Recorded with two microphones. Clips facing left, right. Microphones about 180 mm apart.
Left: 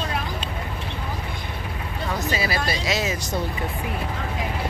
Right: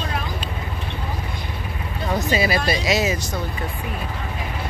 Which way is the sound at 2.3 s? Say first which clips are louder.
Right 6 dB; 20° right (ahead or behind).